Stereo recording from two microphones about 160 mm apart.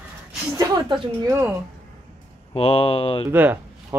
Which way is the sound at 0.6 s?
25° right (ahead or behind).